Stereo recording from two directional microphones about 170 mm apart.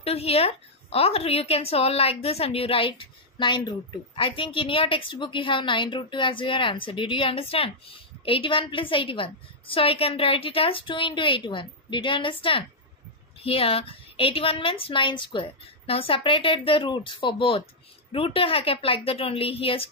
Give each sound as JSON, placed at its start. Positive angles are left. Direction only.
{"t": 0.0, "sound": "a woman's voice", "side_deg": 35}